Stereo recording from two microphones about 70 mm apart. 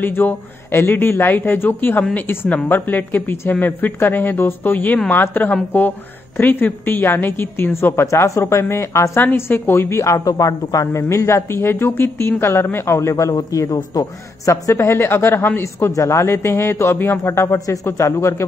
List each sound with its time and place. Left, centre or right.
0.0 s a woman's voice: left
9.2 s a woman's voice: left
10.0 s a woman's voice: left
15.9 s a woman's voice: left